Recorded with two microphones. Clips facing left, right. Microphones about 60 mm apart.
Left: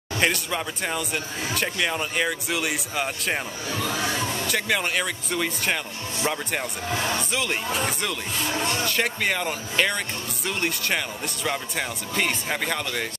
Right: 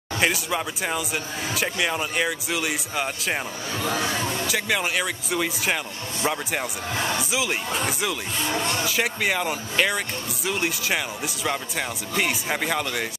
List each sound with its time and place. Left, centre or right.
0.2 s speech: centre
4.5 s speech: centre